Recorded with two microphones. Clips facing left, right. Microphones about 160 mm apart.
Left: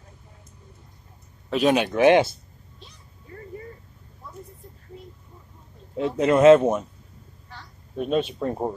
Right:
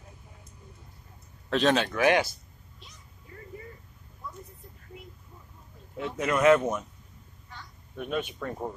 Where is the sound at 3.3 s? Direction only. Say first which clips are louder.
Left 6 dB; 45° left (ahead or behind).